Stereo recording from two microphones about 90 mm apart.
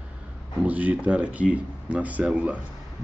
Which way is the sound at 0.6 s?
20° right (ahead or behind).